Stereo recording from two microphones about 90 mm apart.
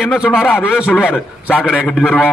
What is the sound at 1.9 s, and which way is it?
Speech, 5° right (ahead or behind).